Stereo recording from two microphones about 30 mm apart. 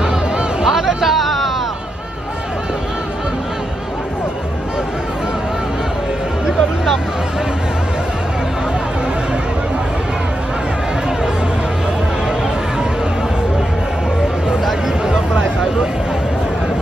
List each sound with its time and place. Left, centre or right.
0.0 s music: right
0.7 s hubbub: centre